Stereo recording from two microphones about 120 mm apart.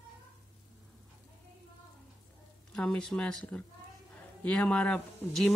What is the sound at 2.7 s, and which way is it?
A woman's voice, 5° left (ahead or behind).